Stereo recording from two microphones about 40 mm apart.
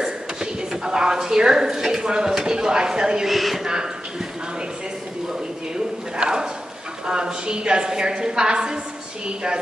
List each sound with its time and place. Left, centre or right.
0.0 s a woman's voice: centre
3.3 s speech: centre
6.1 s a woman's voice: centre